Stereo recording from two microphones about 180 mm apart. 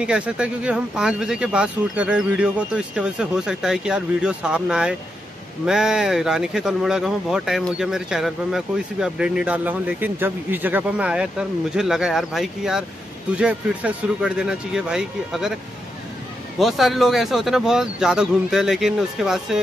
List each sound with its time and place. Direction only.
0.0 s speech: 5° right (ahead or behind)
16.5 s speech: centre (ahead or behind)